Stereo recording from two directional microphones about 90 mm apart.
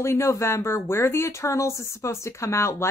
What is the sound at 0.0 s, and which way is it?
Speech, 30° left (ahead or behind).